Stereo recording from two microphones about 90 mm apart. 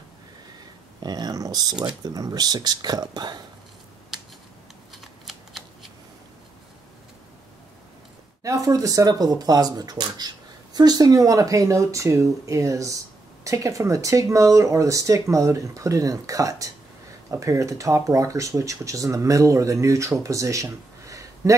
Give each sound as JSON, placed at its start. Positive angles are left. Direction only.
{"t": 1.0, "sound": "a sound", "side_deg": -45}
{"t": 2.0, "sound": "speech", "side_deg": -45}
{"t": 4.9, "sound": "shuffling cards", "side_deg": 0}
{"t": 8.4, "sound": "speech", "side_deg": -40}